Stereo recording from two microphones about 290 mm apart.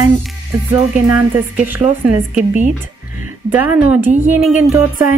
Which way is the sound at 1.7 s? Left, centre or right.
Centre.